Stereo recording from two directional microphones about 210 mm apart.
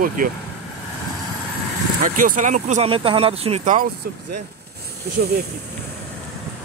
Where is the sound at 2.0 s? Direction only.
40° right (ahead or behind).